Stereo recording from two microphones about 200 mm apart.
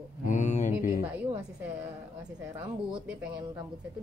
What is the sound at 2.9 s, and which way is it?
Speech, 5° right (ahead or behind).